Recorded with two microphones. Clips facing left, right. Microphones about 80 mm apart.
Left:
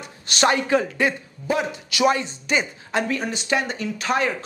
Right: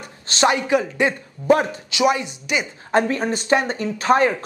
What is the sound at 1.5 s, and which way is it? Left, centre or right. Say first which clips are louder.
Speech: right 7 dB; right.